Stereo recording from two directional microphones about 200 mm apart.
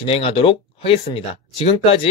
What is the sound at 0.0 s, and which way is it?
Speech, 30° left (ahead or behind).